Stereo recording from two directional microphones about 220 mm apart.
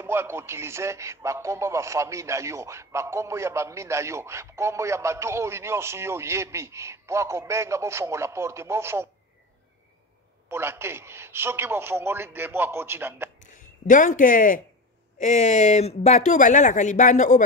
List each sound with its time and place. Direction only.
0.0 s speech: 10° right (ahead or behind)
10.5 s speech: 10° right (ahead or behind)
13.4 s speech: 35° left (ahead or behind)